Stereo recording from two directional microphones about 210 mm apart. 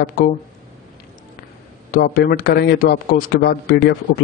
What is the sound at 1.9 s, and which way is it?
Speech, 45° left (ahead or behind).